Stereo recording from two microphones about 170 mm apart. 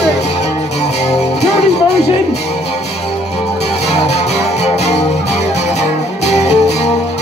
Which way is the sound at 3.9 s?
40° left (ahead or behind).